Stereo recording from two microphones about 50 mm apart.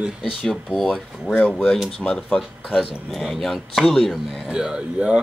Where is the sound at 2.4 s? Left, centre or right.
Centre.